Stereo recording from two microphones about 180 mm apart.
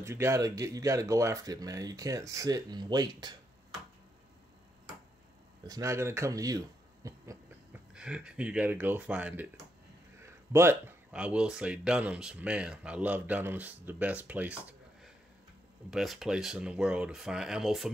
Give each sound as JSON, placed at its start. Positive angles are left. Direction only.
{"t": 0.0, "sound": "speech", "side_deg": -15}
{"t": 5.7, "sound": "speech", "side_deg": -15}
{"t": 7.9, "sound": "speech", "side_deg": -5}
{"t": 15.9, "sound": "speech", "side_deg": 0}